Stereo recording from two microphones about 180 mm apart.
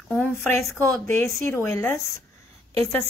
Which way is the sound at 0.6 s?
10° left (ahead or behind).